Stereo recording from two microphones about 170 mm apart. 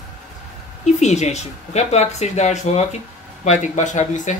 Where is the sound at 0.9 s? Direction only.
40° left (ahead or behind).